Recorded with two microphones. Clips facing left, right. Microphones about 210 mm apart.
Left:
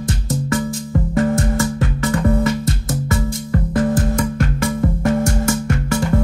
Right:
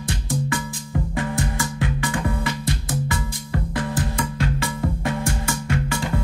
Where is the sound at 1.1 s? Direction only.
45° left (ahead or behind).